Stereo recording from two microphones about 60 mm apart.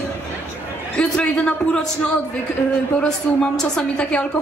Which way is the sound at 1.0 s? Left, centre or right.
Centre.